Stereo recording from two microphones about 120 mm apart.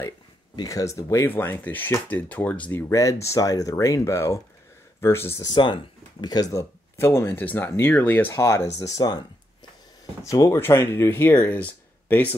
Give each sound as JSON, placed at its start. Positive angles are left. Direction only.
{"t": 0.6, "sound": "speech", "side_deg": 30}
{"t": 3.0, "sound": "speech", "side_deg": 25}
{"t": 5.4, "sound": "speech", "side_deg": 35}
{"t": 6.5, "sound": "speech", "side_deg": 25}
{"t": 8.3, "sound": "speech", "side_deg": 25}
{"t": 10.2, "sound": "speech", "side_deg": 30}